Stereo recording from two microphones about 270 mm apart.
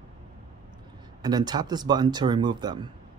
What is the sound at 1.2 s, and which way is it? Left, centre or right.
Speech, centre.